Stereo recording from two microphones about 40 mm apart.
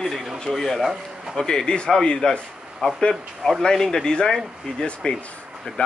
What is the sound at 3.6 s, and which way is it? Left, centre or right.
Speech, centre.